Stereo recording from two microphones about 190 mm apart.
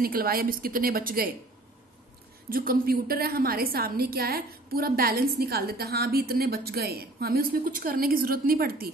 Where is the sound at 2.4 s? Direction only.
50° right (ahead or behind).